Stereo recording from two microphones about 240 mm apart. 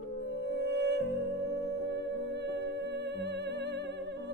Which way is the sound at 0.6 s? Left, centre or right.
Right.